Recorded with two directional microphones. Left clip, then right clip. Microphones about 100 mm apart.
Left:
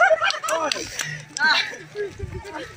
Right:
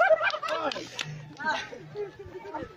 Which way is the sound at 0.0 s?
Centre (ahead or behind).